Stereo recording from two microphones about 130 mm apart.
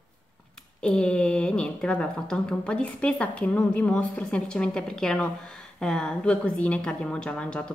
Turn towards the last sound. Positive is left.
turn(degrees=10)  # may be behind; listen again after turning